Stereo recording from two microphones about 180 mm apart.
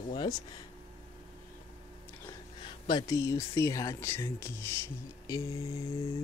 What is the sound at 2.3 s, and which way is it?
Speech, 25° left (ahead or behind).